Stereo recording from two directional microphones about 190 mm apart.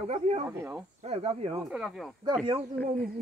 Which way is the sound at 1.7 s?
5° right (ahead or behind).